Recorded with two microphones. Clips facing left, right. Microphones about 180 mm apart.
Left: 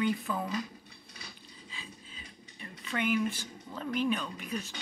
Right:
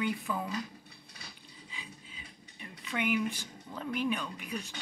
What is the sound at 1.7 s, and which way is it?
Mechanisms, 15° right (ahead or behind).